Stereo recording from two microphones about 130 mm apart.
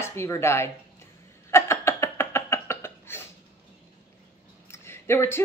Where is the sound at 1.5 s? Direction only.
20° left (ahead or behind).